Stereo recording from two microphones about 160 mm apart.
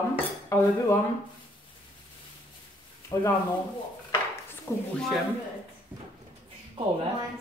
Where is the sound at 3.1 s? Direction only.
25° left (ahead or behind).